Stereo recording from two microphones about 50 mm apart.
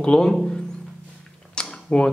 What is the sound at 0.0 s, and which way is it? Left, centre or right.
Speech, centre.